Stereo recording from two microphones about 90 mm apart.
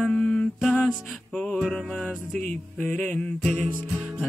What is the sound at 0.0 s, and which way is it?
Mantra, 10° left (ahead or behind).